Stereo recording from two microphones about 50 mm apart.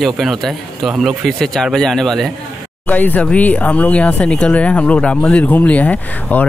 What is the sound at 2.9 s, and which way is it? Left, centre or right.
Speech, left.